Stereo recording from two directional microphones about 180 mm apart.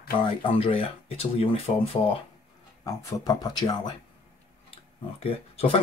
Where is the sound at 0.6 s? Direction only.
30° left (ahead or behind).